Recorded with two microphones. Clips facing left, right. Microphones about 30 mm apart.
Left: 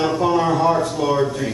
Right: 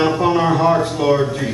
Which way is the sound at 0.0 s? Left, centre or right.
Right.